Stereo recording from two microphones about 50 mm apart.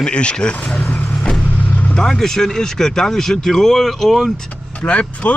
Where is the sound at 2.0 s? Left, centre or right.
Centre.